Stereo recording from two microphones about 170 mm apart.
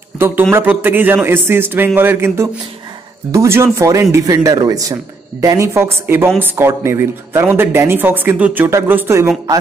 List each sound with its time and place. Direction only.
0.2 s speech: 15° right (ahead or behind)